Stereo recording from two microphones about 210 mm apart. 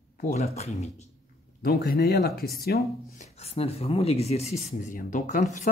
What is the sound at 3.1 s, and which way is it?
Speech, 30° left (ahead or behind).